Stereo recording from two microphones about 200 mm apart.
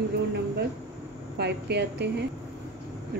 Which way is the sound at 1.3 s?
55° right (ahead or behind).